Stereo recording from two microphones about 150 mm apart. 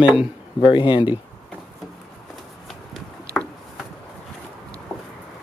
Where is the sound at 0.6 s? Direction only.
35° left (ahead or behind).